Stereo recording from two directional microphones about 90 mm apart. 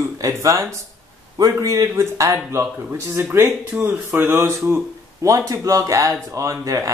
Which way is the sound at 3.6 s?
20° right (ahead or behind).